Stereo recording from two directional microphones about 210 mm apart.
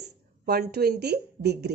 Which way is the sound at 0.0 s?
45° right (ahead or behind).